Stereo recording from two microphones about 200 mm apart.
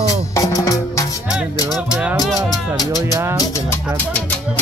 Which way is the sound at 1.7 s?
5° right (ahead or behind).